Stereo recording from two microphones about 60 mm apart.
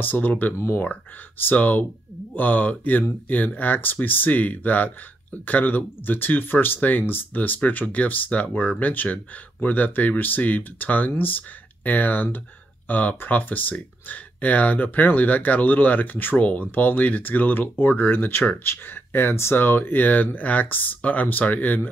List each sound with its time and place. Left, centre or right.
0.0 s speech: left
0.6 s speech: left
1.4 s speech: left